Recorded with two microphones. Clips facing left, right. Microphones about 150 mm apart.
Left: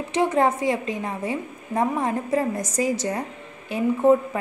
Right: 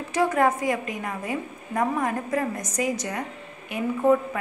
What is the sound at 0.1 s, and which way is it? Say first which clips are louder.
A woman's voice: left 1 dB; 25° left (ahead or behind).